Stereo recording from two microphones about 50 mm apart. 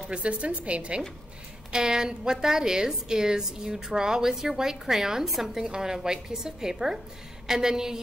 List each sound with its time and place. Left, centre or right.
0.1 s a woman's voice: right